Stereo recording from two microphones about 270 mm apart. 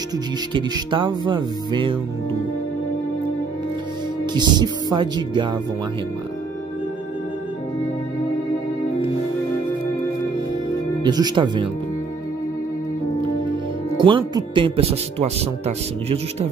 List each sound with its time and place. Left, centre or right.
0.5 s music: centre
4.3 s music: centre
11.0 s music: centre
13.9 s speech: centre